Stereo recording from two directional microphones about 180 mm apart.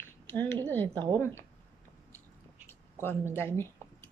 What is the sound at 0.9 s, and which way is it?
Speech, 25° right (ahead or behind).